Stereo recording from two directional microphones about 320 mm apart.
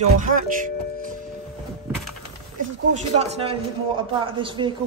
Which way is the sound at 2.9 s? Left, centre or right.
Right.